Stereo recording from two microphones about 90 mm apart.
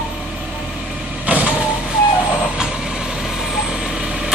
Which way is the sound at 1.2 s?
15° right (ahead or behind).